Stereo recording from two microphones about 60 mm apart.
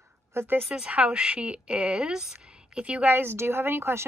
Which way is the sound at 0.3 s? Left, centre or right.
Right.